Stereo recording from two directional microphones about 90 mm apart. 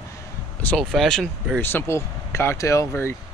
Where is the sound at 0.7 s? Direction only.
5° left (ahead or behind).